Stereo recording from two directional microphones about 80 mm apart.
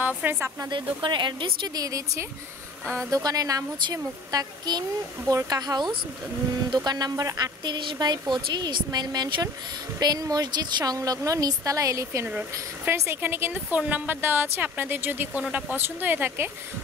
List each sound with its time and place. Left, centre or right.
0.2 s speech: right
0.7 s speech: right
1.8 s speech: right
7.6 s speech: right
11.0 s speech: right
12.3 s speech: centre
12.9 s speech: right